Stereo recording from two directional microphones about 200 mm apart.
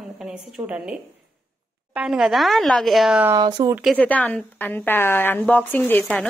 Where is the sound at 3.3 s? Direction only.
20° right (ahead or behind).